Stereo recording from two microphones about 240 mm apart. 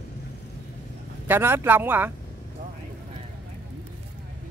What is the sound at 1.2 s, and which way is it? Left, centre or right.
Speech, centre.